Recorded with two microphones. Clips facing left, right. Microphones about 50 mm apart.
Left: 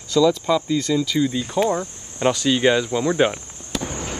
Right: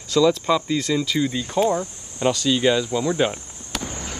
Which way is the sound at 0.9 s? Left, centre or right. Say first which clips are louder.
Left 2 dB; right.